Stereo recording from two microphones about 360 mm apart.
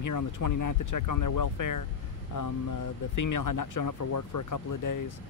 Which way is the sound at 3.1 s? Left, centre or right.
Left.